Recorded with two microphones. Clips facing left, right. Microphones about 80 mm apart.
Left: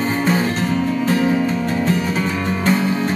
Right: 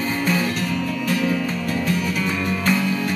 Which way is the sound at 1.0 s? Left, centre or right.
Left.